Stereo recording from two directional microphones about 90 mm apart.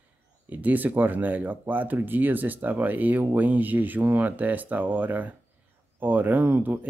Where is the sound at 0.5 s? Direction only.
20° right (ahead or behind).